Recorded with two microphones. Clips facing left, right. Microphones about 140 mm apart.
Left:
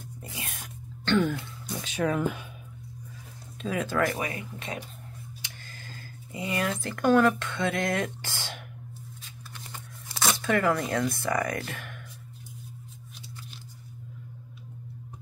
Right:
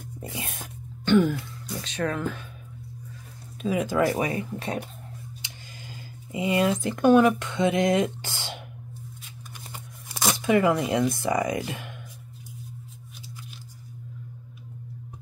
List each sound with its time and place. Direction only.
0.2 s speech: 25° right (ahead or behind)
1.0 s speech: 5° right (ahead or behind); by 2.4 s 15° left (ahead or behind)
3.6 s speech: 10° right (ahead or behind)
4.1 s speech: 30° right (ahead or behind)
5.4 s speech: 15° right (ahead or behind)
9.7 s tearing: 15° right (ahead or behind)
11.2 s speech: 20° right (ahead or behind)